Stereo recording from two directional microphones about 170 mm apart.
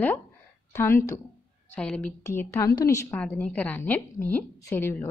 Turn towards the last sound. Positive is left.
turn(degrees=15)  # may be behind; listen again after turning